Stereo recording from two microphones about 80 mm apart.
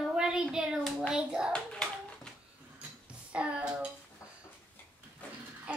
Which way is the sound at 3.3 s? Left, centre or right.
Centre.